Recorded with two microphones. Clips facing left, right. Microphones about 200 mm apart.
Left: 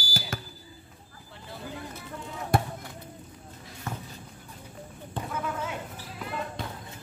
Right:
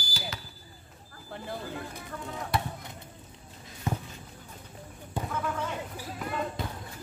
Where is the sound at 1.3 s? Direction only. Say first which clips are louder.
Right 4 dB; 55° right (ahead or behind).